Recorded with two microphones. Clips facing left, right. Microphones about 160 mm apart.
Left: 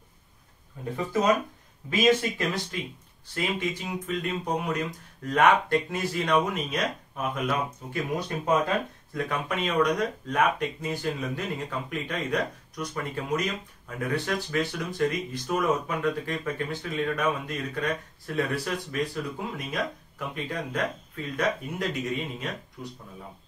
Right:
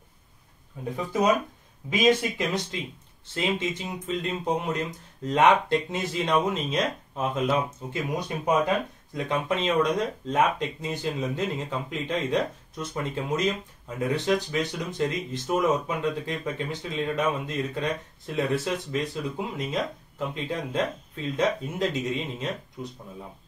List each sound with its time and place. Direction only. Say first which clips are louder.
0.9 s speech: right 1 dB; 15° right (ahead or behind)